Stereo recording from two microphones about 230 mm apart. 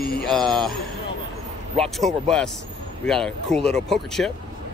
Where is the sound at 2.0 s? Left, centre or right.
Centre.